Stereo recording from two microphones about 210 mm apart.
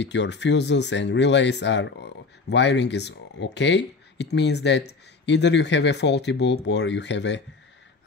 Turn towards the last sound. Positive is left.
turn(degrees=55)  # may be behind; listen again after turning